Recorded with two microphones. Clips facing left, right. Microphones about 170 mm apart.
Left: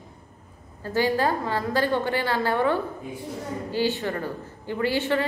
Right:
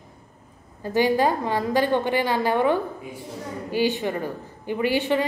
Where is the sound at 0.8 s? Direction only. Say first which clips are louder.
Right 3 dB; 15° right (ahead or behind).